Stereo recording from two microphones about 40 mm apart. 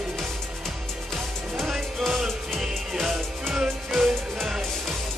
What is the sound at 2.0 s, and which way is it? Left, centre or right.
Music, centre.